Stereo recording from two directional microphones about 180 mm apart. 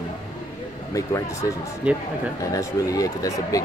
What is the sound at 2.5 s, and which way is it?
Speech, 20° left (ahead or behind).